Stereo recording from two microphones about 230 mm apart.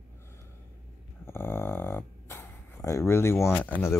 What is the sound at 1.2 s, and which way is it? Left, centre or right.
Dog, centre.